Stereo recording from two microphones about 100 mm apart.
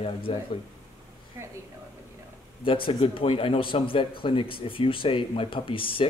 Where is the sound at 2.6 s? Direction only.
60° left (ahead or behind).